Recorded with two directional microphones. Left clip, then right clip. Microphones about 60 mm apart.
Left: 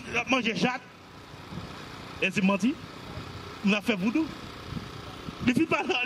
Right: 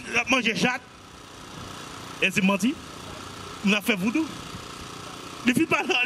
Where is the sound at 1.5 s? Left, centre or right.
Right.